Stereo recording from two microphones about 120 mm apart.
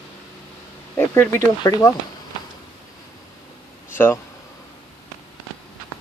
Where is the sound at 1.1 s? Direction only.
20° left (ahead or behind).